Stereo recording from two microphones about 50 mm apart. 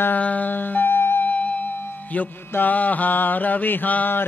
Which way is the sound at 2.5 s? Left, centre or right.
Left.